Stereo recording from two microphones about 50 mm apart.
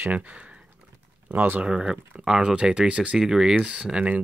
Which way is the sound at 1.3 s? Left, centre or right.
Right.